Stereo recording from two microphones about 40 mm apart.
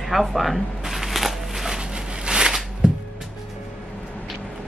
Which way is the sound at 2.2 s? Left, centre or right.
Centre.